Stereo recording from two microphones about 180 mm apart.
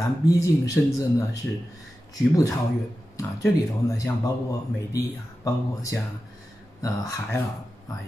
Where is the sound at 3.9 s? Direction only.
20° left (ahead or behind).